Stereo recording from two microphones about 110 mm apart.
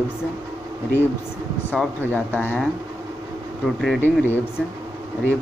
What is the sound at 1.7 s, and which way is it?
Speech, 15° left (ahead or behind).